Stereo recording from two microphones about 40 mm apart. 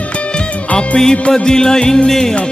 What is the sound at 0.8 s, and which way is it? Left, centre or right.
Music, centre.